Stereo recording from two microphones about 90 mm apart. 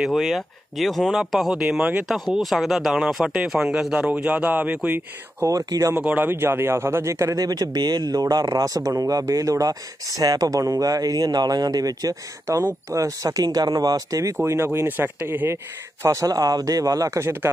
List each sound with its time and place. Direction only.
0.0 s speech: centre (ahead or behind); by 5.5 s 20° right (ahead or behind)
5.5 s speech: 40° right (ahead or behind)
5.9 s speech: 15° right (ahead or behind); by 14.3 s 40° right (ahead or behind)
14.3 s speech: 25° right (ahead or behind)